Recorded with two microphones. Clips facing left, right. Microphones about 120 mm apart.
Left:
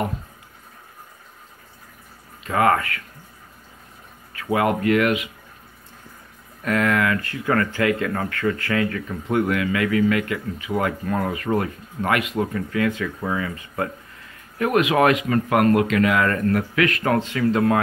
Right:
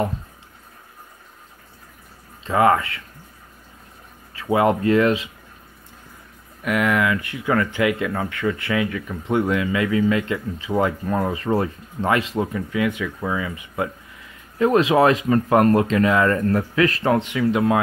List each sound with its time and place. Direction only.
2.4 s speech: 20° right (ahead or behind)
4.4 s speech: 25° right (ahead or behind)
6.6 s speech: 15° right (ahead or behind)
12.5 s speech: 15° right (ahead or behind)
14.6 s speech: 30° right (ahead or behind)
17.1 s speech: 20° right (ahead or behind)